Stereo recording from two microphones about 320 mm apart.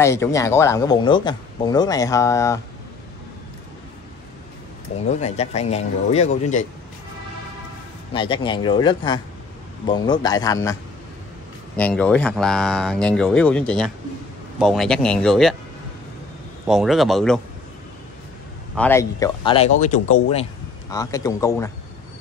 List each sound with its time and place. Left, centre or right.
0.0 s a man's voice: centre
5.1 s speech: left
8.1 s a man's voice: centre
16.6 s speech: centre
18.8 s a man's voice: centre